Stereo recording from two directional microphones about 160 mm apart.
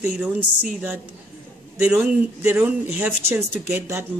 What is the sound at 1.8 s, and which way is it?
A woman's voice, 10° right (ahead or behind).